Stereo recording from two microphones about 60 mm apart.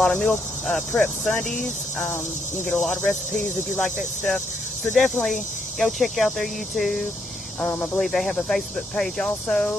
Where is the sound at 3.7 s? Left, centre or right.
Left.